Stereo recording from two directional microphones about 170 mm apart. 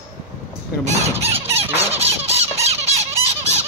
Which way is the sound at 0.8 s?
40° right (ahead or behind).